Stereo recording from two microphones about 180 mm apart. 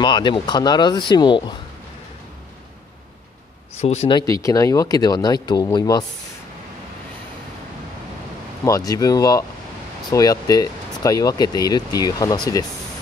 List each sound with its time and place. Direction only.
0.0 s speech: 25° left (ahead or behind)
3.8 s speech: 35° left (ahead or behind)
4.2 s speech: 20° left (ahead or behind)
8.6 s speech: 20° left (ahead or behind)